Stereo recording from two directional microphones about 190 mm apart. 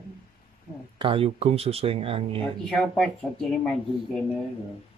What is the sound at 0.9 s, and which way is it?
Speech, 30° right (ahead or behind).